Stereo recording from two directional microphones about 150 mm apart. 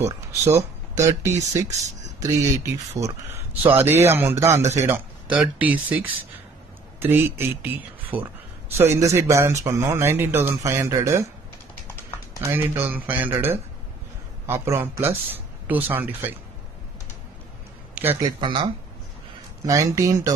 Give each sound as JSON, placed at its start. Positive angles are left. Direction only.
{"t": 0.3, "sound": "a man's voice", "side_deg": -20}
{"t": 8.0, "sound": "a sound", "side_deg": -10}
{"t": 8.7, "sound": "a man's voice", "side_deg": -20}
{"t": 12.4, "sound": "a man's voice", "side_deg": -15}
{"t": 18.0, "sound": "a sound", "side_deg": -10}
{"t": 18.4, "sound": "speech", "side_deg": -35}
{"t": 19.6, "sound": "speech", "side_deg": -20}